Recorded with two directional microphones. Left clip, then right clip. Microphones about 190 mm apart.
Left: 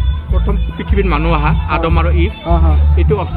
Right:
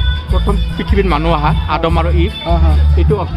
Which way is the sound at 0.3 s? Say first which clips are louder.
Right 1 dB; 35° right (ahead or behind).